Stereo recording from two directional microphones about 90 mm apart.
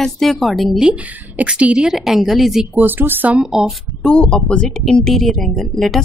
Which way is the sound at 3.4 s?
5° right (ahead or behind).